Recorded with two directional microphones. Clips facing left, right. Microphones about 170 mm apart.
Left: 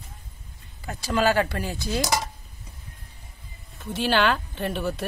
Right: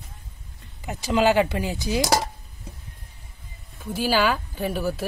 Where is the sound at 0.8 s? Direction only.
15° right (ahead or behind).